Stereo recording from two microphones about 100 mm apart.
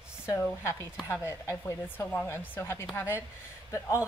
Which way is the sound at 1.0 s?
25° left (ahead or behind).